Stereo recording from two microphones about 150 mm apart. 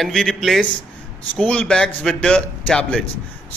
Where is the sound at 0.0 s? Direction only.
5° left (ahead or behind).